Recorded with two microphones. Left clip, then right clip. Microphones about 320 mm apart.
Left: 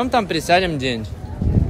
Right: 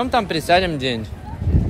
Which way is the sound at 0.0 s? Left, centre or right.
Centre.